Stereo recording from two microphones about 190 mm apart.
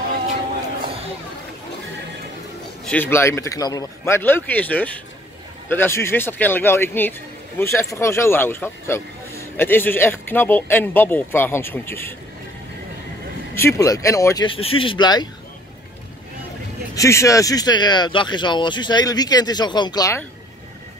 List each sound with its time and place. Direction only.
2.9 s speech: 10° left (ahead or behind)
13.6 s speech: 15° left (ahead or behind)
16.9 s speech: 15° left (ahead or behind)